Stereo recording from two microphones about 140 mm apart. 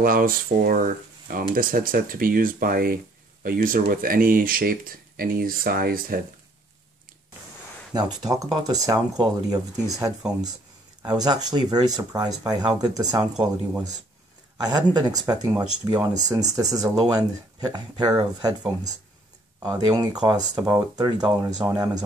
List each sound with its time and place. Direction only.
0.0 s speech: 90° right
7.9 s speech: 30° right (ahead or behind)
13.3 s speech: 10° right (ahead or behind)
14.6 s speech: 30° right (ahead or behind)
19.6 s speech: 30° right (ahead or behind)